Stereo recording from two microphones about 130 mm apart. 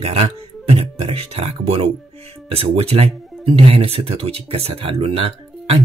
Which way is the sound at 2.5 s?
45° right (ahead or behind).